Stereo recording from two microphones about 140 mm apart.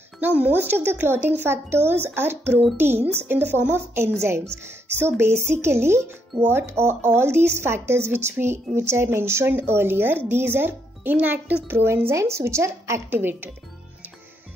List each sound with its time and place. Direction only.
0.2 s a woman's voice: 10° right (ahead or behind)